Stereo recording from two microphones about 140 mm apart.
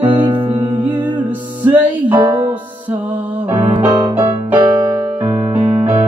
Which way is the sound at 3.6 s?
15° right (ahead or behind).